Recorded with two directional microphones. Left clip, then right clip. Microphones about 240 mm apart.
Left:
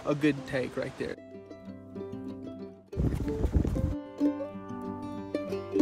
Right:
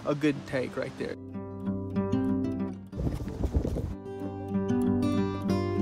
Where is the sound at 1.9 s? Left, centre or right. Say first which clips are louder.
Right 9 dB; centre.